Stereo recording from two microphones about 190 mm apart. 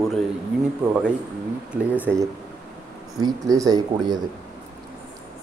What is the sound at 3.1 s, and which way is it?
Speech, 20° right (ahead or behind).